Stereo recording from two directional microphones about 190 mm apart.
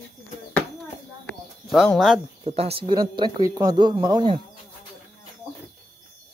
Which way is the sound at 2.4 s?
30° right (ahead or behind).